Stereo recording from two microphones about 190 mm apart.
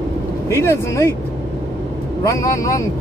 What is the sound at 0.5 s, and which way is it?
Speech, 15° left (ahead or behind).